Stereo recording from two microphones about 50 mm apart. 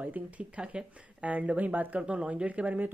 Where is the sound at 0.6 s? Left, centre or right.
Centre.